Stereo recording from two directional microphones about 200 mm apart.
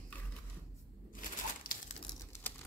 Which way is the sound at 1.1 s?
45° left (ahead or behind).